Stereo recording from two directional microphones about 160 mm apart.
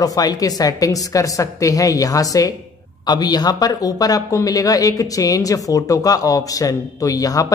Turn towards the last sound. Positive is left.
turn(degrees=20)  # may be behind; listen again after turning